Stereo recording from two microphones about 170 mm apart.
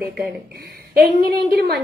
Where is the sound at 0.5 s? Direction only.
65° right (ahead or behind).